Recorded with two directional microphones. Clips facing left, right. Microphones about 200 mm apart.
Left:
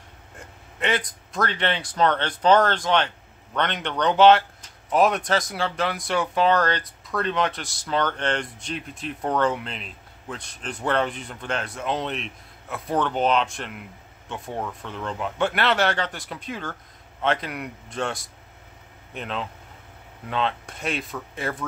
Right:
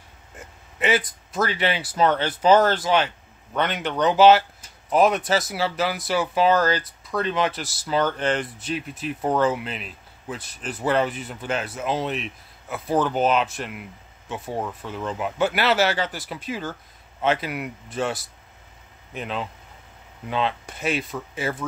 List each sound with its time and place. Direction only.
0.4 s speech: 5° right (ahead or behind)